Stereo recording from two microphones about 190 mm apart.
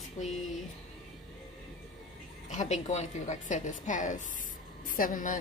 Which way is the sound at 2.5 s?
40° left (ahead or behind).